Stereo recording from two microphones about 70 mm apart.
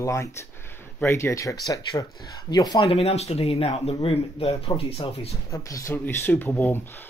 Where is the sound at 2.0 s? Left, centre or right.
Left.